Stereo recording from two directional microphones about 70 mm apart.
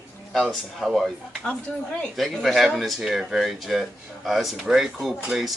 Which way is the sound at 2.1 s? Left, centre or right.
Centre.